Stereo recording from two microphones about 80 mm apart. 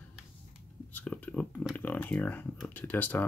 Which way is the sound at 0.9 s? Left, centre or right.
Left.